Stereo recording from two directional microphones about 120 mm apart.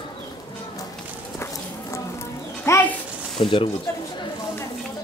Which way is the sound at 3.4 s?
50° left (ahead or behind).